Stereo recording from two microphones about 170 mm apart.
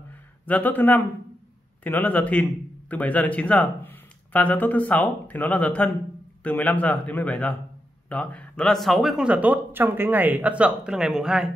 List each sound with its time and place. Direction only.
0.5 s speech: 10° left (ahead or behind)